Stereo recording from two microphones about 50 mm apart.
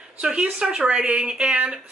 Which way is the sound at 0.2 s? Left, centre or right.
Right.